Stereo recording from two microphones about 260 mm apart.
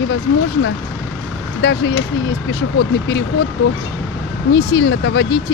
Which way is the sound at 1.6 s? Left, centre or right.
Left.